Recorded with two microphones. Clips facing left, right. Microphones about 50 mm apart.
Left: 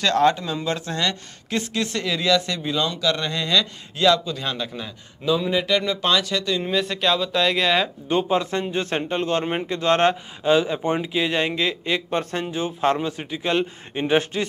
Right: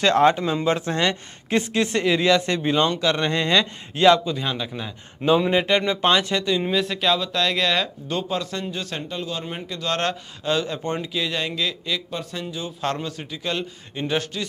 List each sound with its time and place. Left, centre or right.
0.0 s speech: right; by 4.9 s centre
5.2 s speech: right
6.6 s speech: centre
11.2 s a man's voice: left